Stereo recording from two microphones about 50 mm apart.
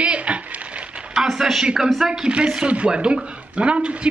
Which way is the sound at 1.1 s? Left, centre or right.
Centre.